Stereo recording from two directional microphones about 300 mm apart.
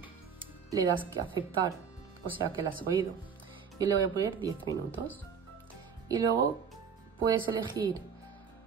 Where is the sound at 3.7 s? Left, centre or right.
Centre.